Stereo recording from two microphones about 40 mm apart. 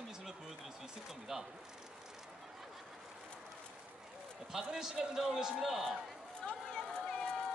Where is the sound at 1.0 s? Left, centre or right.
Centre.